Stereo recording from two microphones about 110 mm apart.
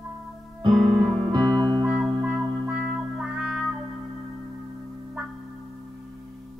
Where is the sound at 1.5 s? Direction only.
5° left (ahead or behind).